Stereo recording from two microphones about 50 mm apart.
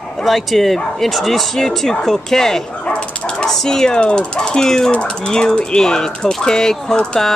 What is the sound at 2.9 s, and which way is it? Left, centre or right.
Dog, left.